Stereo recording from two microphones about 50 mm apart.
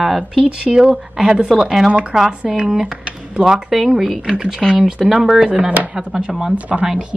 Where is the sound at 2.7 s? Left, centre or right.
Centre.